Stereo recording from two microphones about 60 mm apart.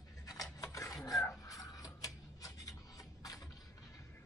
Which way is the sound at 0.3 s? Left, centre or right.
Left.